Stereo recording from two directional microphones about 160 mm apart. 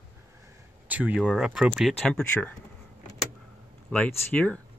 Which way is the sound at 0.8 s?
10° right (ahead or behind).